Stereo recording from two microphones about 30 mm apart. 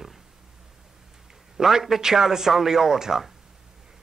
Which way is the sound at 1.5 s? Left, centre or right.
Centre.